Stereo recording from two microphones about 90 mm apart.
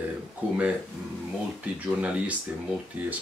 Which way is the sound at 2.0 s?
15° right (ahead or behind).